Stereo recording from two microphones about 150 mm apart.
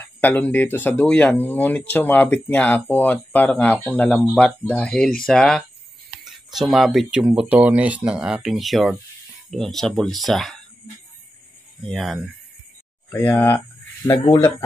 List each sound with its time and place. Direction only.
0.0 s speech: 10° left (ahead or behind)
11.8 s speech: centre (ahead or behind)
13.2 s speech: 10° left (ahead or behind)